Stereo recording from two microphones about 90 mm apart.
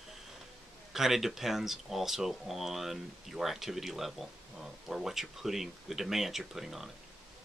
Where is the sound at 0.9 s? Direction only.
5° right (ahead or behind).